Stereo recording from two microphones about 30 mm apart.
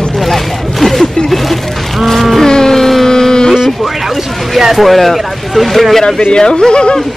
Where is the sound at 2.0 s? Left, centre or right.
Centre.